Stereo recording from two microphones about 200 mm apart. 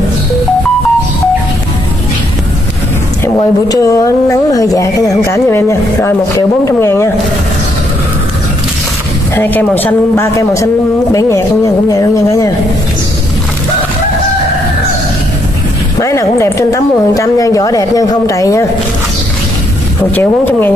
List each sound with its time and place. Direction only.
3.3 s a woman's voice: 20° left (ahead or behind)
9.3 s a woman's voice: 10° left (ahead or behind)
16.0 s a woman's voice: 15° left (ahead or behind)
20.2 s a woman's voice: 10° left (ahead or behind)